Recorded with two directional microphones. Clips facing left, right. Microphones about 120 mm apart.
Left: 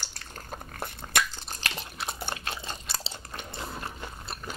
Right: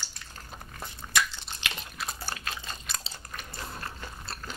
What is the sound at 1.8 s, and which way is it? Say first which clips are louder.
Biting: left 2 dB; 25° left (ahead or behind).